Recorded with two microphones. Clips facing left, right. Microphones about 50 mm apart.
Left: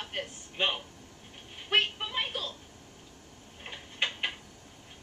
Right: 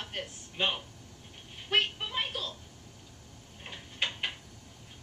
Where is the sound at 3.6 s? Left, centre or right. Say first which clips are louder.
Left 1 dB; centre.